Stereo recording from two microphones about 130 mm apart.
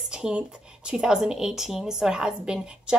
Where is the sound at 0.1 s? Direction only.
5° right (ahead or behind).